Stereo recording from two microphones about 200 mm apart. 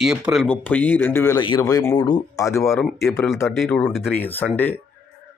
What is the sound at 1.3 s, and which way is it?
Speech, 20° left (ahead or behind).